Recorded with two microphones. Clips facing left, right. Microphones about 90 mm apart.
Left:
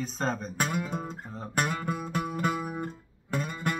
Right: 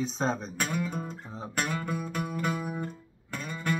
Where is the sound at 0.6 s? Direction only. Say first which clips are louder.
Left 2 dB; 35° left (ahead or behind).